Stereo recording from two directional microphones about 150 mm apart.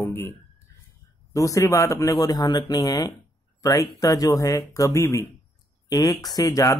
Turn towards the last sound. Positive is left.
turn(degrees=25)  # may be behind; listen again after turning